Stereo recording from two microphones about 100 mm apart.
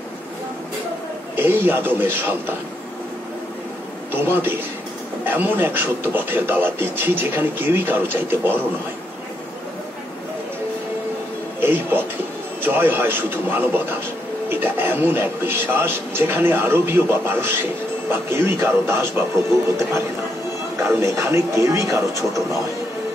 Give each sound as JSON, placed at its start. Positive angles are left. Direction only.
{"t": 1.3, "sound": "speech", "side_deg": -20}
{"t": 4.1, "sound": "speech", "side_deg": -20}
{"t": 11.6, "sound": "speech", "side_deg": -20}